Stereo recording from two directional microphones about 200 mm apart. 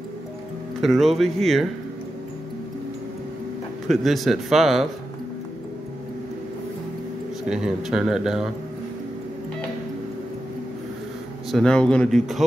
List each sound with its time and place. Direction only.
0.7 s speech: centre (ahead or behind)
3.8 s speech: centre (ahead or behind)
7.4 s speech: 5° right (ahead or behind)
11.5 s speech: 5° left (ahead or behind)